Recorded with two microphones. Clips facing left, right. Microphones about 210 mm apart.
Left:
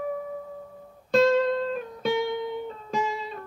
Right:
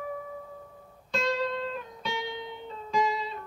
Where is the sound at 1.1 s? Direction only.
50° left (ahead or behind).